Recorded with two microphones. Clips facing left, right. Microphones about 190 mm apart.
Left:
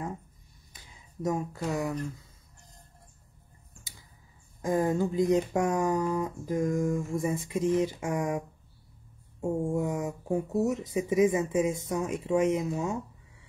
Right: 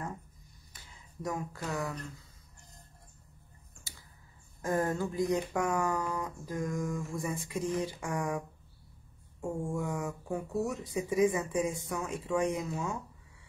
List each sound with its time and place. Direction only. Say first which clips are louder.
0.7 s speech: left 5 dB; 20° left (ahead or behind)
4.6 s speech: left 4 dB; 15° left (ahead or behind)